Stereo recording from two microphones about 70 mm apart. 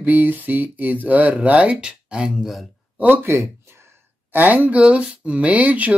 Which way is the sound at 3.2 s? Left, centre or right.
Right.